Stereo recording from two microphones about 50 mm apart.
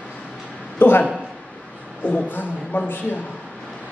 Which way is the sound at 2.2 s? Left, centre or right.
Left.